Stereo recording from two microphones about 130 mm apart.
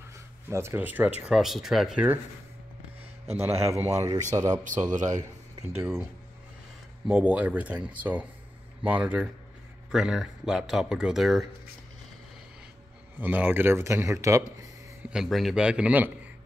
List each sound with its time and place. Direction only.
0.5 s speech: 20° right (ahead or behind); by 2.0 s centre (ahead or behind)
3.3 s speech: 20° right (ahead or behind)
5.8 s speech: 15° right (ahead or behind)
7.1 s speech: 10° right (ahead or behind)
13.2 s speech: 15° right (ahead or behind)
15.0 s speech: centre (ahead or behind)